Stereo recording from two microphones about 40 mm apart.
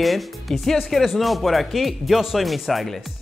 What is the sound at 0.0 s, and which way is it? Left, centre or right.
Speech, centre.